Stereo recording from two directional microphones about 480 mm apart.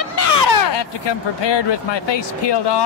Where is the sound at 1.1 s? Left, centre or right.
Left.